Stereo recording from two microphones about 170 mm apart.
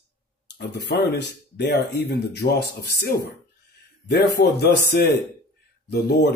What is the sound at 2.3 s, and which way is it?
Speech, 75° left (ahead or behind).